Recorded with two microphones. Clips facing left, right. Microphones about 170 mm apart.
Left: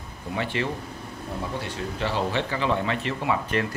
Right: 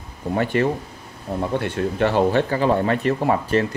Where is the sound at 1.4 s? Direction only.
60° right (ahead or behind); by 3.6 s 40° right (ahead or behind).